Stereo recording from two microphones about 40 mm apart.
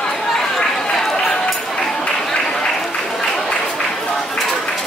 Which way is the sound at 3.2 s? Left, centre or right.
Centre.